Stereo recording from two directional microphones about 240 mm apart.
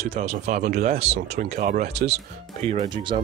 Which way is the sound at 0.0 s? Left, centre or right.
Right.